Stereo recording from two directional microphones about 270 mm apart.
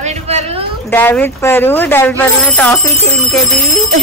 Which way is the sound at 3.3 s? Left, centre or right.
Centre.